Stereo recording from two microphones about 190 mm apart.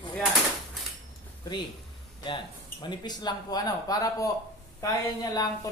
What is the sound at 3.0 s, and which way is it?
A woman's voice, 20° left (ahead or behind).